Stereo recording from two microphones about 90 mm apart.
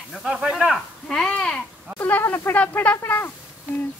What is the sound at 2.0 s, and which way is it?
Speech, 20° left (ahead or behind).